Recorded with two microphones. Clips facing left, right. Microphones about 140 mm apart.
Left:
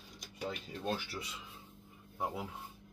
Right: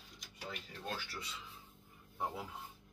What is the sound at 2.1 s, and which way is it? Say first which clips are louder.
Speech: left 2 dB; 10° left (ahead or behind).